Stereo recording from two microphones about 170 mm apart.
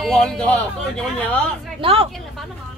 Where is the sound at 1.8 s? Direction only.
35° right (ahead or behind).